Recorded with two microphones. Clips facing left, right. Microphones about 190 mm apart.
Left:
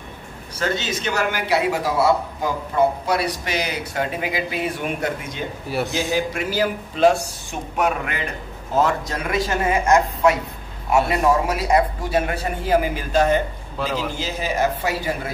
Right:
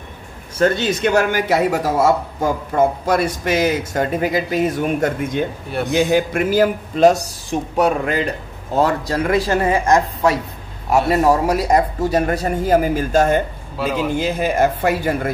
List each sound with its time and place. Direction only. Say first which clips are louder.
0.6 s a man's voice: right 8 dB; 55° right (ahead or behind)
7.7 s a man's voice: right 5 dB; 35° right (ahead or behind)
13.7 s a man's voice: right 4 dB; 5° right (ahead or behind)
14.1 s a man's voice: right 6 dB; 55° right (ahead or behind)